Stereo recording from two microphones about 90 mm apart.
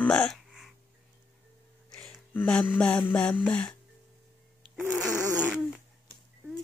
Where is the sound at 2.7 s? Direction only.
10° left (ahead or behind).